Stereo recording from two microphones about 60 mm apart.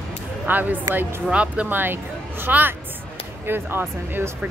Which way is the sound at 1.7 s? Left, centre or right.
Right.